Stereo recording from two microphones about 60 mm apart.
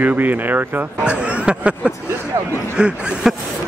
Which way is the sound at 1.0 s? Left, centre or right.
Centre.